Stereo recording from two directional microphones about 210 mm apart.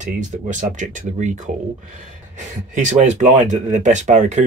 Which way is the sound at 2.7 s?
35° right (ahead or behind).